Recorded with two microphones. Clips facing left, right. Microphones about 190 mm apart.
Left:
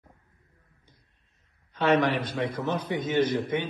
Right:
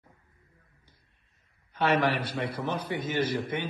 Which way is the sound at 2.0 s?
55° right (ahead or behind).